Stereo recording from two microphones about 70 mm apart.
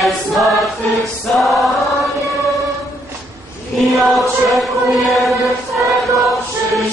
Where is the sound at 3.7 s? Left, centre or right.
Centre.